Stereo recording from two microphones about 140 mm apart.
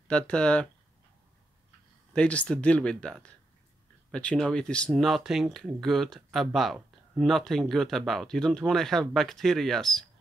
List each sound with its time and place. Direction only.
0.1 s speech: 5° left (ahead or behind)
2.1 s speech: 10° left (ahead or behind)